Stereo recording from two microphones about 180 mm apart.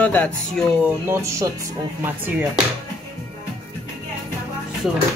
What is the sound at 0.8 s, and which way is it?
Speech, 15° right (ahead or behind).